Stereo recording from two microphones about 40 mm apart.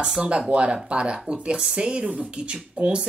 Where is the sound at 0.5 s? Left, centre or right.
Right.